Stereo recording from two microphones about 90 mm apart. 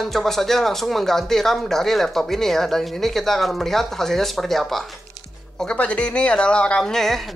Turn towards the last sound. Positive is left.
turn(degrees=5)  # may be behind; listen again after turning